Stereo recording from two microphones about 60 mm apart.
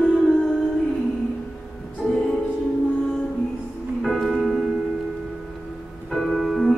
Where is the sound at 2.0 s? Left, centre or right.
Centre.